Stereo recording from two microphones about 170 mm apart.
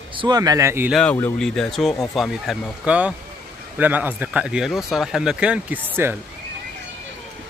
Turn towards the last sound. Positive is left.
turn(degrees=-10)  # may be behind; listen again after turning